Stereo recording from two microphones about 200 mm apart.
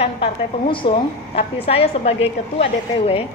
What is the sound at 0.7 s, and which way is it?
A woman's voice, 25° left (ahead or behind).